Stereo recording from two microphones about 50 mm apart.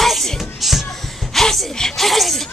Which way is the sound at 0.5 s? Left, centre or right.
Centre.